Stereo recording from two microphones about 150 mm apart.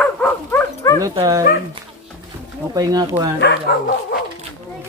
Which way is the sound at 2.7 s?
25° right (ahead or behind).